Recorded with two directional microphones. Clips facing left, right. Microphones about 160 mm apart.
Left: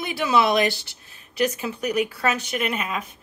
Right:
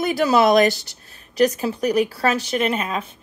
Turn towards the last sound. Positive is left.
turn(degrees=-30)  # may be behind; listen again after turning